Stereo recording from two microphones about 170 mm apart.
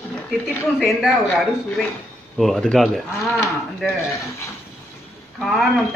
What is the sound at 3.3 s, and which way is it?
Speech, 15° left (ahead or behind).